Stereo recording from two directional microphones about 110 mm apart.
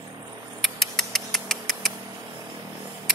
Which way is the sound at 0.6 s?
Centre (ahead or behind).